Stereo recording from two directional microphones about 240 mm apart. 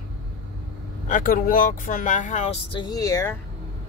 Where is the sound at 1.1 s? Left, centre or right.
Left.